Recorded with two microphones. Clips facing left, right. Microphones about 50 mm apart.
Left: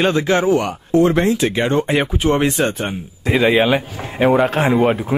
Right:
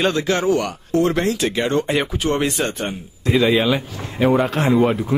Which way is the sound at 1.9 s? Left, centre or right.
Centre.